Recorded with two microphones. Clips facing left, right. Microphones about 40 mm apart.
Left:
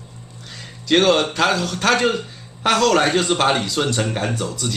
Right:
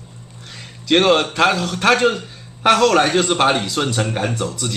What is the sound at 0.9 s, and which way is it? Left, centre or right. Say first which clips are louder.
A man's voice: right 1 dB; centre.